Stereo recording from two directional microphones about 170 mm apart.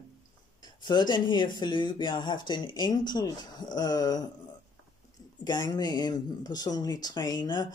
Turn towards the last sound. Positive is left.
turn(degrees=25)  # may be behind; listen again after turning